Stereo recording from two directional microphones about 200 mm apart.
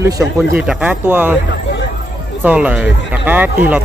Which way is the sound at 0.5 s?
5° right (ahead or behind).